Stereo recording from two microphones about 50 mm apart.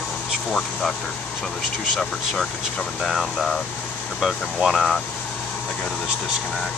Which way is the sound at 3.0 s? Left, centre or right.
Centre.